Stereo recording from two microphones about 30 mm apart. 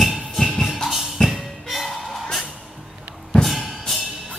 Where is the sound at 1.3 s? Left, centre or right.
Centre.